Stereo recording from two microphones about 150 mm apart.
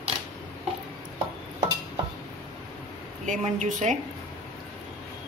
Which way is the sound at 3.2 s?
55° right (ahead or behind).